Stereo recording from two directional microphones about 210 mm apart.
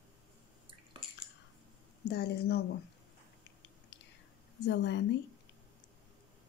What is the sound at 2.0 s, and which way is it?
Speech, 50° left (ahead or behind).